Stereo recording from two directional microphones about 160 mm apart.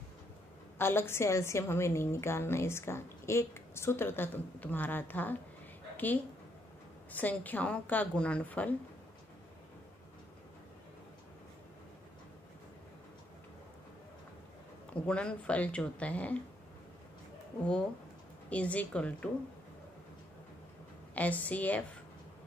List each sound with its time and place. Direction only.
0.7 s a woman's voice: 15° left (ahead or behind)
7.2 s a woman's voice: 10° left (ahead or behind)
15.0 s a woman's voice: 5° left (ahead or behind)
18.5 s a woman's voice: 10° left (ahead or behind)
21.1 s a woman's voice: 10° left (ahead or behind)